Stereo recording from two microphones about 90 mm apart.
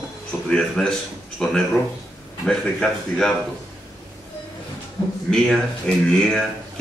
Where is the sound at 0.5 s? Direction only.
5° left (ahead or behind).